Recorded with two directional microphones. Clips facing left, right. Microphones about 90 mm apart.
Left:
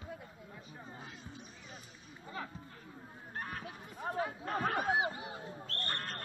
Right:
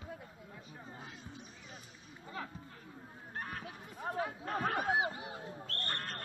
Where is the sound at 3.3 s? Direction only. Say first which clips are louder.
Left 1 dB; centre (ahead or behind).